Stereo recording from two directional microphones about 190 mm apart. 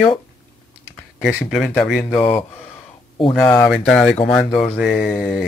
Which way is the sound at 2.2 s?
30° left (ahead or behind).